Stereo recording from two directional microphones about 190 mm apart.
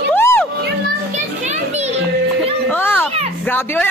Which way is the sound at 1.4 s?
35° right (ahead or behind).